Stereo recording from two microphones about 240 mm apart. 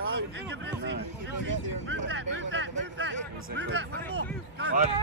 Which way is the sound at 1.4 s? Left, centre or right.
Right.